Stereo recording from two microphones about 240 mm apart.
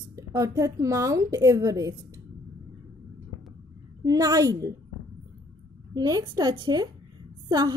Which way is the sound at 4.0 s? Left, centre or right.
Centre.